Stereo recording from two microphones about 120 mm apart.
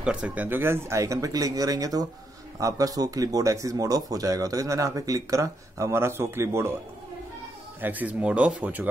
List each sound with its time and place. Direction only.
0.0 s speech: 10° right (ahead or behind)
7.8 s speech: 15° right (ahead or behind)